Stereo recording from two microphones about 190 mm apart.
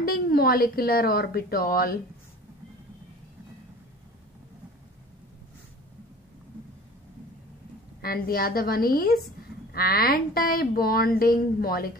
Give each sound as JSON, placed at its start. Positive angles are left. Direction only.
{"t": 0.0, "sound": "a woman's voice", "side_deg": 55}
{"t": 8.0, "sound": "a woman's voice", "side_deg": 50}